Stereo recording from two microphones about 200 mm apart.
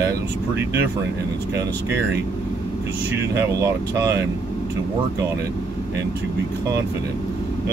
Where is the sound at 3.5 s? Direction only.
15° right (ahead or behind).